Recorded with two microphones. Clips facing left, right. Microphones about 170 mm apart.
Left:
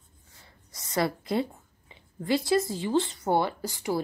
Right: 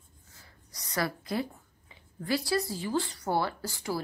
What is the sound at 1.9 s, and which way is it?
Speech, 20° left (ahead or behind).